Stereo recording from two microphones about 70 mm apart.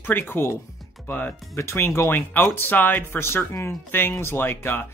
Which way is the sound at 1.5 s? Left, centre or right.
Left.